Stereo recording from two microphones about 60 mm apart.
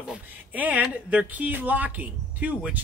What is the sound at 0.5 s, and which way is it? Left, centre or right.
Speech, right.